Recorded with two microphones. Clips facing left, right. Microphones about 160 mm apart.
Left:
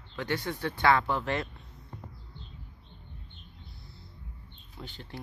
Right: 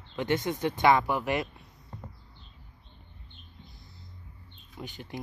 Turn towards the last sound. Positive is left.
turn(degrees=-15)  # may be behind; listen again after turning